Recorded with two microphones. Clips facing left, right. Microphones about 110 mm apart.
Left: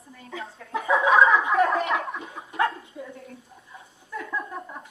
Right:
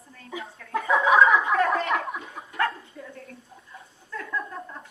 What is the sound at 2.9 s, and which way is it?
Bow-wow, 25° left (ahead or behind).